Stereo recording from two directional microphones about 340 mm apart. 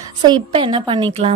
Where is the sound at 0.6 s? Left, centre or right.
Centre.